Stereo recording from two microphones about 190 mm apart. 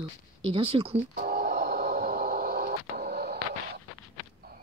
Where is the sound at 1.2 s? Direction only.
55° right (ahead or behind).